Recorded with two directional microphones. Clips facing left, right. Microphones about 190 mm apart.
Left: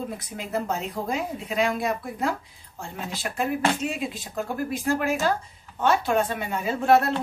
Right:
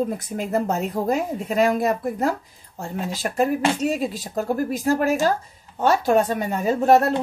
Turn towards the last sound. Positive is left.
turn(degrees=-45)  # may be behind; listen again after turning